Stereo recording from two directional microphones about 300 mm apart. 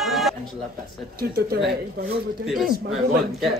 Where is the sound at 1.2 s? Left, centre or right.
Right.